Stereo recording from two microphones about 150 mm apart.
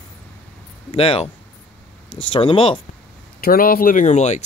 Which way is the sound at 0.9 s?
40° left (ahead or behind).